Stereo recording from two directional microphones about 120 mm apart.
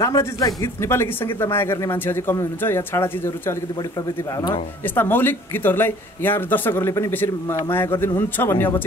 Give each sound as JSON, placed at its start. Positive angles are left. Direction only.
{"t": 0.0, "sound": "speech", "side_deg": 25}
{"t": 4.9, "sound": "speech", "side_deg": 15}